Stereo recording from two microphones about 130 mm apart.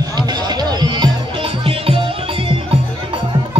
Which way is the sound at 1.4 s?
45° right (ahead or behind).